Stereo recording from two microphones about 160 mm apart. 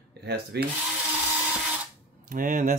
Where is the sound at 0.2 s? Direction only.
90° right.